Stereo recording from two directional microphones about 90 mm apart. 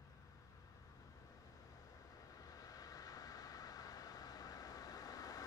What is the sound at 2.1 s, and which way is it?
Vehicle, 40° left (ahead or behind).